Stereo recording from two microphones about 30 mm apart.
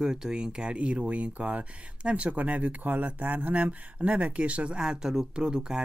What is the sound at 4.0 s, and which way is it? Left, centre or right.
Speech, right.